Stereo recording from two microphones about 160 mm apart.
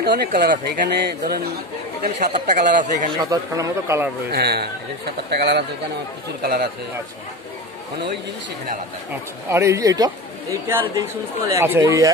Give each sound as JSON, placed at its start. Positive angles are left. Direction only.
{"t": 0.0, "sound": "speech", "side_deg": -70}
{"t": 2.4, "sound": "speech", "side_deg": -55}
{"t": 3.2, "sound": "speech", "side_deg": -20}
{"t": 4.3, "sound": "a man's voice", "side_deg": -90}
{"t": 6.4, "sound": "speech", "side_deg": -70}
{"t": 9.1, "sound": "speech", "side_deg": -15}